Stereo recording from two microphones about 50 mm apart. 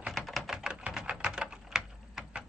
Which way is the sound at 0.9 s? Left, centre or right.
Centre.